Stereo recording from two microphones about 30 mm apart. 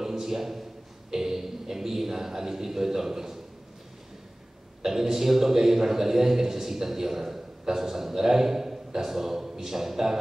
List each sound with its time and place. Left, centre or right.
0.0 s a sound: centre
1.1 s a man's voice: centre
4.8 s a man's voice: centre